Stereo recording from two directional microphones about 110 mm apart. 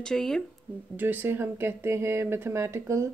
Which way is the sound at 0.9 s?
20° right (ahead or behind).